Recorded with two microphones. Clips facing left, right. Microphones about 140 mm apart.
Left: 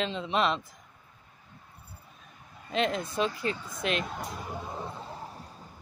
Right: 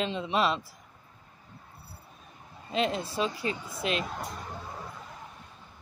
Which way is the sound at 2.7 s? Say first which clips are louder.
Even; 30° right (ahead or behind).